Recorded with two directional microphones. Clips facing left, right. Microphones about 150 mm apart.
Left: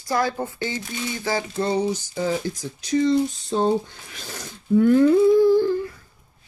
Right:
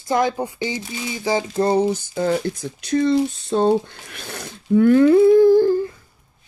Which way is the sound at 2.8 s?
60° right (ahead or behind).